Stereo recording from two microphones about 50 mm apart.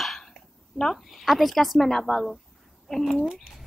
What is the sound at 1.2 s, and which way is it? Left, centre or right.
Child singing, centre.